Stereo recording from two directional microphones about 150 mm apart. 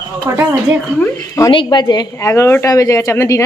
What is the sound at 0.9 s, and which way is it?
Speech, 20° left (ahead or behind).